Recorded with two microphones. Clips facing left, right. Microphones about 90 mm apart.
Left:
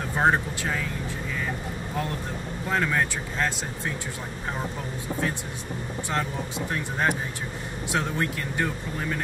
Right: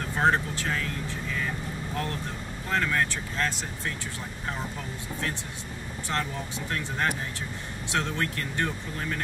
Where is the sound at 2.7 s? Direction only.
15° left (ahead or behind).